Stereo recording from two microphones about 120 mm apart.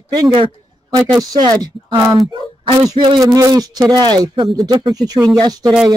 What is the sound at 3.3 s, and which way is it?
Speech, 30° right (ahead or behind).